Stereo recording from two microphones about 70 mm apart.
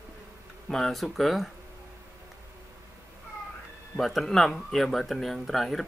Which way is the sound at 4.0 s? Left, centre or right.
Centre.